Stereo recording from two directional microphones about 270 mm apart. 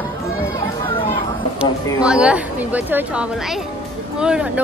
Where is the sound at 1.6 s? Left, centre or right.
Centre.